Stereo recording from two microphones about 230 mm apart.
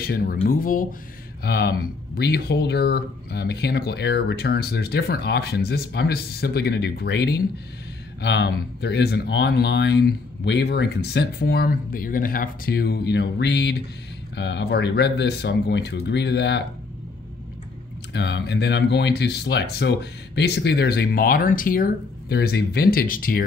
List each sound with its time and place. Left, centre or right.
0.0 s speech: left
18.1 s speech: left